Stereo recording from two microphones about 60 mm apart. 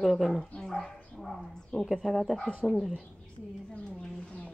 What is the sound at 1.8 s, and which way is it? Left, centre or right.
Speech, centre.